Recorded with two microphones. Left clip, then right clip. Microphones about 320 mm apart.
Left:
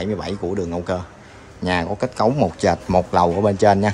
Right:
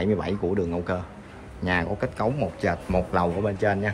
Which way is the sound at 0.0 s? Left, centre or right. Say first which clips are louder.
Left 1 dB; centre.